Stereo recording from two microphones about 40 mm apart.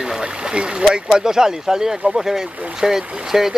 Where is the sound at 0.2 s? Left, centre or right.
Right.